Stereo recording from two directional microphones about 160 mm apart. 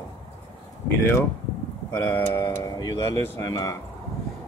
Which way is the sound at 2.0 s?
10° left (ahead or behind).